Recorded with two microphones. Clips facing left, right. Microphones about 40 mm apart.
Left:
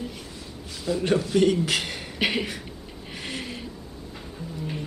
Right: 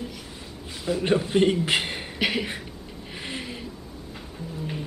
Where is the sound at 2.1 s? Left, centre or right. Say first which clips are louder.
Left 1 dB; centre.